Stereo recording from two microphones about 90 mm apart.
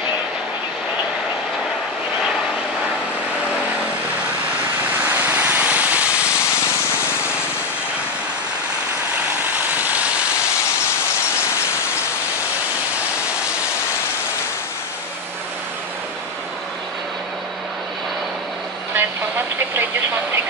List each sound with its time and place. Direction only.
5.0 s vehicle: 20° right (ahead or behind)
9.5 s vehicle: 20° right (ahead or behind)
18.9 s vehicle: 25° right (ahead or behind)